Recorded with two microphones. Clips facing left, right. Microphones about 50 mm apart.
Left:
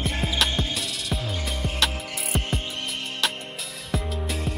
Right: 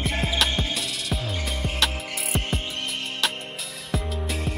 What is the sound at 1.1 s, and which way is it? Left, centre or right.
Music, centre.